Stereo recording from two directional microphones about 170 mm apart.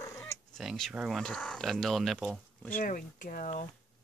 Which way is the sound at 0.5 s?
Centre (ahead or behind).